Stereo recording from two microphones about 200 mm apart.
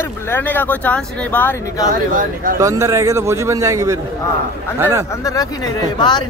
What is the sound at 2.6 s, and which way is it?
A man's voice, 15° right (ahead or behind).